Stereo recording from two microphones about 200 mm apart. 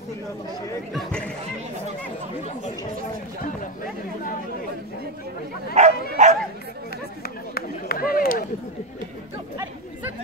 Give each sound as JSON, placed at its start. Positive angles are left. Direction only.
{"t": 0.9, "sound": "speech", "side_deg": 5}
{"t": 5.8, "sound": "bow-wow", "side_deg": -35}
{"t": 7.2, "sound": "run", "side_deg": 50}